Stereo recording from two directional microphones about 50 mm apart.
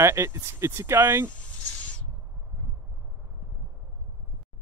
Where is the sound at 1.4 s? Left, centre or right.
Left.